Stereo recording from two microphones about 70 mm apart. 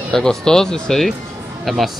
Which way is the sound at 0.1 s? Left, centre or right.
Centre.